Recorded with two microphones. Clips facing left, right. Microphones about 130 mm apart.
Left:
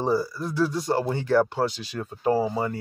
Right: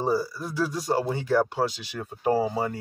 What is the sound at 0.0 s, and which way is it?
Speech, 5° right (ahead or behind).